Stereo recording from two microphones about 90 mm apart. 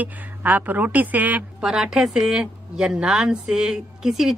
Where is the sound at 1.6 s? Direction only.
5° right (ahead or behind).